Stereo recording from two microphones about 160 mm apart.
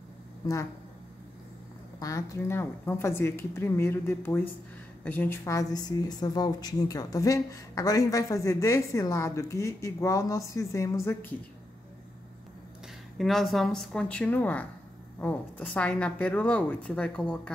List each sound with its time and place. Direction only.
2.0 s speech: 20° left (ahead or behind)
5.4 s a woman's voice: 20° left (ahead or behind)
13.2 s speech: centre (ahead or behind)